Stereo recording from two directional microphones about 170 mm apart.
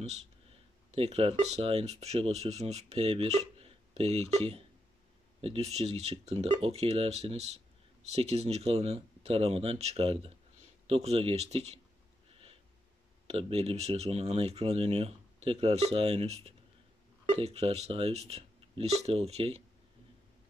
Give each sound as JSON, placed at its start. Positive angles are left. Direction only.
{"t": 0.9, "sound": "speech", "side_deg": -35}
{"t": 13.3, "sound": "speech", "side_deg": -35}